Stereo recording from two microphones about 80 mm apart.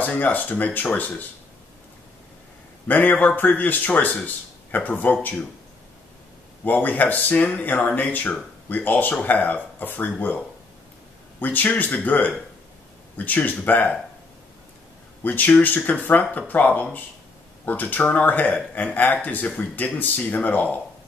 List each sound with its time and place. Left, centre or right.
0.0 s speech: left
2.9 s speech: left
6.6 s speech: left
15.2 s speech: left